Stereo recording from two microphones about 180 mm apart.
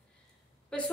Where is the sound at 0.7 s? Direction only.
5° left (ahead or behind).